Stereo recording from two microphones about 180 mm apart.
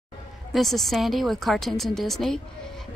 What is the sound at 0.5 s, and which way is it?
A woman's voice, centre (ahead or behind).